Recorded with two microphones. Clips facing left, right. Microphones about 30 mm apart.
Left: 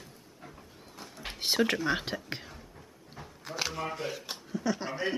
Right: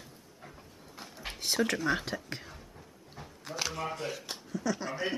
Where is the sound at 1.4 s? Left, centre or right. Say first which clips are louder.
Left 2 dB; left.